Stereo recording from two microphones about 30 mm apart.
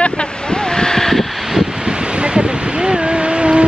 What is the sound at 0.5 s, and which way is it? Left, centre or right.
Vehicle, left.